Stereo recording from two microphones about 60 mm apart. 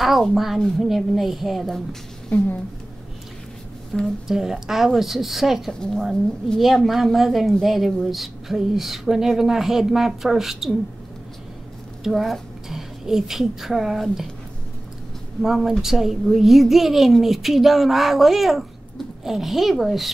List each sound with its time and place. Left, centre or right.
0.0 s a woman's voice: centre
2.3 s a woman's voice: left
3.9 s speech: centre
4.3 s speech: centre
5.7 s a woman's voice: centre
6.6 s speech: centre
12.0 s a woman's voice: centre
15.4 s speech: centre